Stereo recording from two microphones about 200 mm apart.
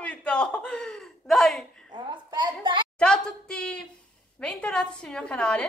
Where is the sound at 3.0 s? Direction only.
5° left (ahead or behind).